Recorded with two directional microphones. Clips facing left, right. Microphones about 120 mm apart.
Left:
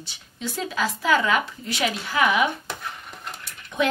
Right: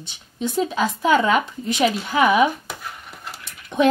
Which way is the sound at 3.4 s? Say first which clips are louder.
Right 6 dB; 25° right (ahead or behind).